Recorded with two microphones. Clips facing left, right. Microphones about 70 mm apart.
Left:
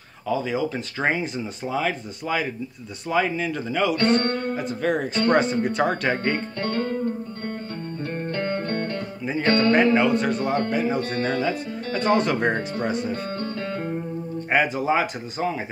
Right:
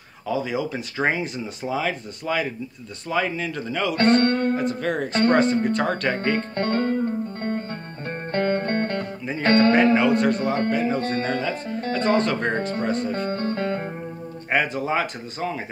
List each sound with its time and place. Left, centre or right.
0.3 s speech: centre
3.9 s speech: right
4.6 s speech: centre
6.5 s speech: right
8.3 s music: right
9.4 s speech: right
9.7 s speech: centre
11.0 s speech: right
11.9 s speech: centre
13.1 s music: right
14.5 s speech: centre